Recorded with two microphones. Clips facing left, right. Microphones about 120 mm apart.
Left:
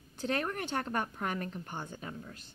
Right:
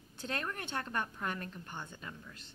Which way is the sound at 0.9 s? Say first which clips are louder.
Left 3 dB; 35° left (ahead or behind).